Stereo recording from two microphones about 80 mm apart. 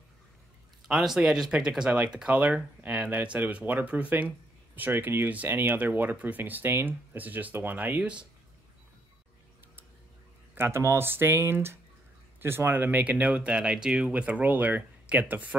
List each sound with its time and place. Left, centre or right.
0.8 s speech: centre
10.5 s speech: right